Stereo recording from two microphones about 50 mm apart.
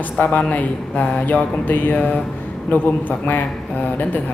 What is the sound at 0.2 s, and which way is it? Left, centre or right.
A man's voice, left.